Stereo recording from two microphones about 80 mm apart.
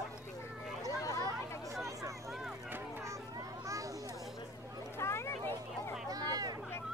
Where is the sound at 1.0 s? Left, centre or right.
Left.